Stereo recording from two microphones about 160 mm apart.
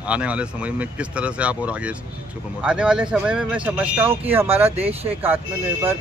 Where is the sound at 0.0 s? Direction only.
10° right (ahead or behind).